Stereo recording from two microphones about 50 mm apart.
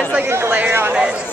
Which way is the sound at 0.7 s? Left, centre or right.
Right.